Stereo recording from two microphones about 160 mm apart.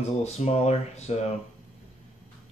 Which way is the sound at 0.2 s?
45° left (ahead or behind).